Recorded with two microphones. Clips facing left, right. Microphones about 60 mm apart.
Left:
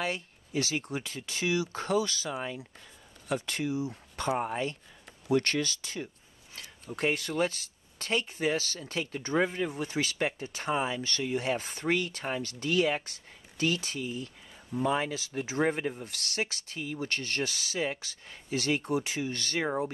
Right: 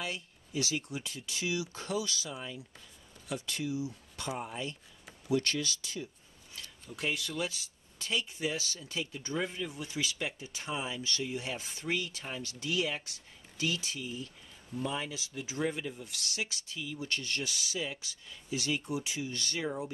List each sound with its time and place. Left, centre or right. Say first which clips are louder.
0.0 s speech: left 6 dB; left